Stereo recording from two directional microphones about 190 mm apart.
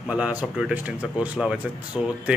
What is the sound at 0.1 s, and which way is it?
A man's voice, 5° right (ahead or behind).